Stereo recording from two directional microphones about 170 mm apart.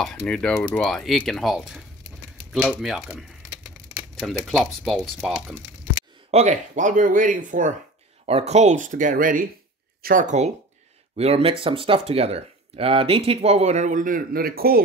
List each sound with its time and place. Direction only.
0.0 s speech: 5° left (ahead or behind)
6.3 s speech: 40° right (ahead or behind)
8.3 s speech: 40° right (ahead or behind); by 14.8 s 60° right (ahead or behind)